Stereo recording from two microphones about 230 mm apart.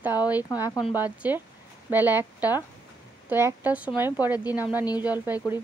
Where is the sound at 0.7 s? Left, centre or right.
Centre.